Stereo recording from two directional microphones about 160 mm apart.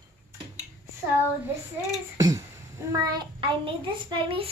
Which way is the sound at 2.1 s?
20° right (ahead or behind).